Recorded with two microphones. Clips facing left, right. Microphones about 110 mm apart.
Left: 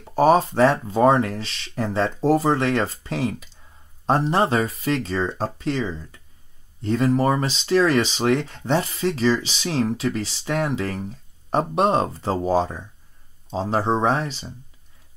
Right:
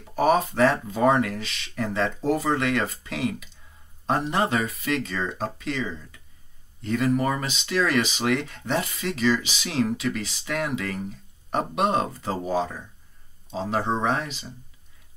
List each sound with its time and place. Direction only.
0.0 s speech: 30° left (ahead or behind)